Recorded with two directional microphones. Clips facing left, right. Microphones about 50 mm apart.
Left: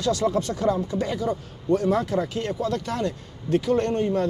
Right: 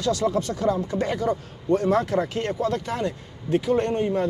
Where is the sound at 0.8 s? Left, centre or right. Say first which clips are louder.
Right 1 dB; right.